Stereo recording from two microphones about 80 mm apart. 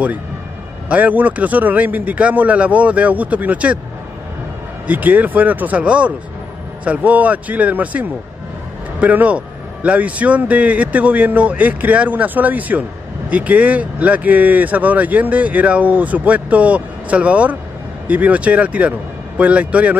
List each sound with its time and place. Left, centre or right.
0.8 s speech: centre
4.8 s speech: right